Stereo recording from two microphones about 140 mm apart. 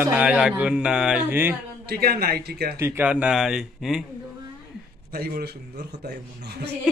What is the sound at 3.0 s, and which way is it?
Speech, 10° right (ahead or behind).